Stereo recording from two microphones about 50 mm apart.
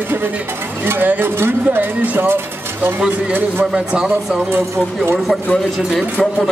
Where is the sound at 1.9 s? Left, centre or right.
Right.